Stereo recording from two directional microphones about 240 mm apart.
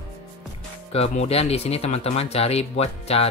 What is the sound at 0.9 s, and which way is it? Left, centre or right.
Speech, left.